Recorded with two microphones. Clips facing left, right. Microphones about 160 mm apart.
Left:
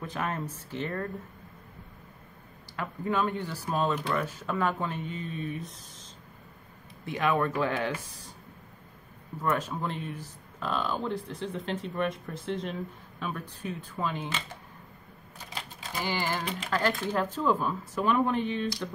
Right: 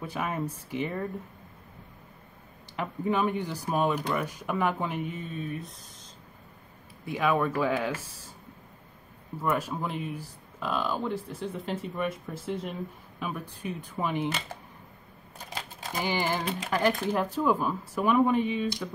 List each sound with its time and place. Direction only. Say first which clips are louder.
0.0 s speech: right 1 dB; 10° right (ahead or behind)
2.7 s speech: right 2 dB; 20° right (ahead or behind); by 5.8 s centre (ahead or behind)
7.1 s speech: right 1 dB; 5° right (ahead or behind)
9.4 s speech: right 1 dB; 10° right (ahead or behind)
16.0 s speech: right 2 dB; 15° right (ahead or behind)